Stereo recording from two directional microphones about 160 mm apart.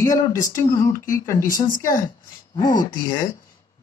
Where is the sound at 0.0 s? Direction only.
20° left (ahead or behind).